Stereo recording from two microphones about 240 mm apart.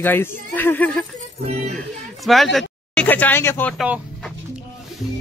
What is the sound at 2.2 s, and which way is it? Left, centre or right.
Speech, centre.